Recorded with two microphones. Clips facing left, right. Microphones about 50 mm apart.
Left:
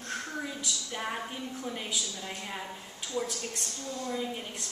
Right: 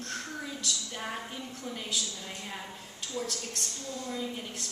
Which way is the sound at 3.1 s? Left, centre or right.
Centre.